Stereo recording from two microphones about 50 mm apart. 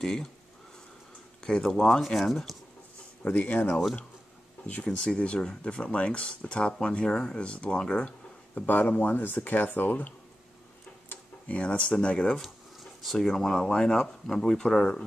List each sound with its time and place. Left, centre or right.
0.0 s speech: centre
1.4 s speech: centre
3.3 s speech: left
4.6 s speech: left
7.1 s speech: centre
7.3 s speech: left
8.6 s speech: left
13.0 s speech: centre